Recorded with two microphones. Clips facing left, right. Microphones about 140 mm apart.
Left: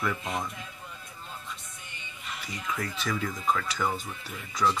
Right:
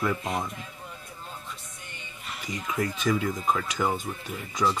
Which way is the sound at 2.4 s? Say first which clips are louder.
Right 5 dB; 15° right (ahead or behind).